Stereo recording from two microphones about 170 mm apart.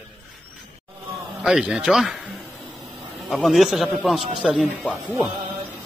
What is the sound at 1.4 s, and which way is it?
Speech, 5° right (ahead or behind).